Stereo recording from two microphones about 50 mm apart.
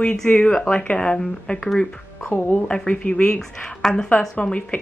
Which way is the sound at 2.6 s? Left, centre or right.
Centre.